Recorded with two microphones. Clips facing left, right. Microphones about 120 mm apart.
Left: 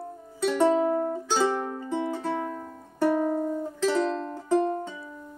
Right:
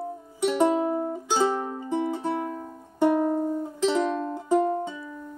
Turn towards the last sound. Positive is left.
turn(degrees=-15)  # may be behind; listen again after turning